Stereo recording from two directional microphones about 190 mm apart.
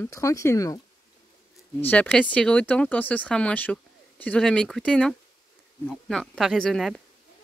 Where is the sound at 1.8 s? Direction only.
10° left (ahead or behind).